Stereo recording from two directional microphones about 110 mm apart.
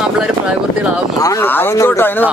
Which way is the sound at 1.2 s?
30° left (ahead or behind).